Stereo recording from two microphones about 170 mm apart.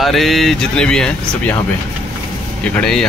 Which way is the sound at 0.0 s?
Centre (ahead or behind).